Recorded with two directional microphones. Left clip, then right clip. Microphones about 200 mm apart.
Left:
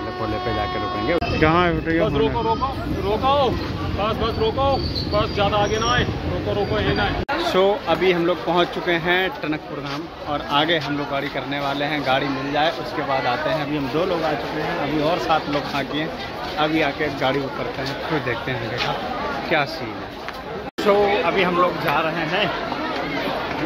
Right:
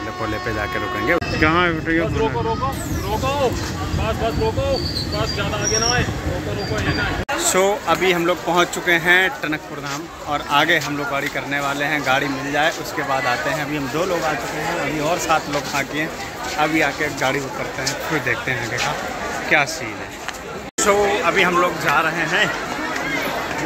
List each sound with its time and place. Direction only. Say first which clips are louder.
0.6 s speech: right 1 dB; centre (ahead or behind)
1.4 s speech: left 1 dB; 25° left (ahead or behind)
5.4 s speech: left 1 dB; 60° left (ahead or behind)
7.4 s speech: right 1 dB; centre (ahead or behind)
15.2 s speech: right 1 dB; 5° right (ahead or behind)
19.5 s speech: right 4 dB; centre (ahead or behind)
20.8 s speech: right 1 dB; centre (ahead or behind)